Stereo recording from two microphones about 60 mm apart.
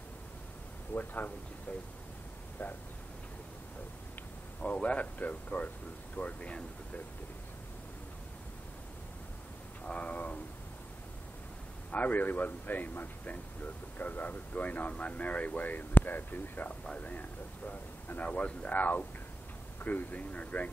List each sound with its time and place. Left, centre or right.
0.9 s a man's voice: left
4.8 s speech: left
9.8 s speech: left
11.9 s speech: left